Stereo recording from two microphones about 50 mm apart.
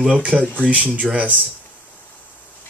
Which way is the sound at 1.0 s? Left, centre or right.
Centre.